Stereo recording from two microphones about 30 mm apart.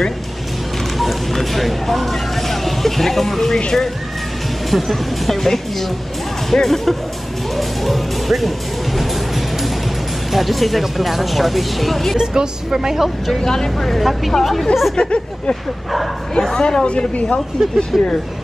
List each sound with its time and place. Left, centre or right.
0.9 s speech: centre
4.6 s speech: centre
12.2 s speech: centre
13.4 s speech: centre
13.8 s speech: centre
15.0 s speech: left
15.9 s speech: centre
16.5 s a woman's voice: left
17.6 s speech: right